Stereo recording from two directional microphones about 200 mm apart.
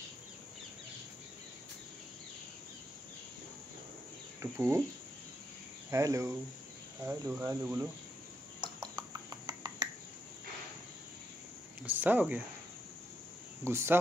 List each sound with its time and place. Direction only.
4.4 s speech: 10° right (ahead or behind)
5.9 s speech: 15° right (ahead or behind)
8.9 s a sound: 20° right (ahead or behind)
11.8 s speech: 10° right (ahead or behind)
13.7 s speech: 10° right (ahead or behind)